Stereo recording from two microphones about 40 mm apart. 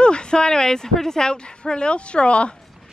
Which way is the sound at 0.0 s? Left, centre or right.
Left.